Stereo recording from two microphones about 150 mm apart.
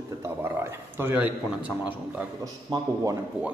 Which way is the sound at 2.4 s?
25° right (ahead or behind).